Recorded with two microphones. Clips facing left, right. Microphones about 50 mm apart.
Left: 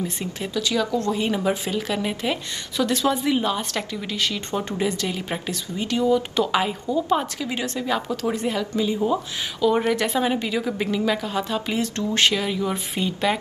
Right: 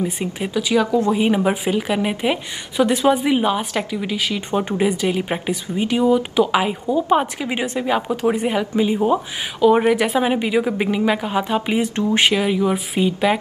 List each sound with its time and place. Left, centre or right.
0.0 s a woman's voice: centre